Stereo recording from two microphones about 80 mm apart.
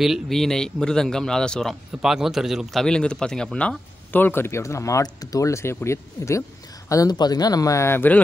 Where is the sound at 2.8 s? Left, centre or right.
Centre; by 5.0 s left.